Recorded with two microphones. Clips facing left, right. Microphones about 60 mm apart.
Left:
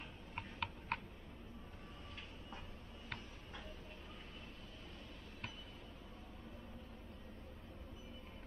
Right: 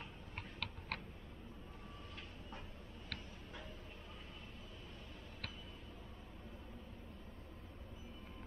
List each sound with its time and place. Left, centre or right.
0.4 s tick-tock: left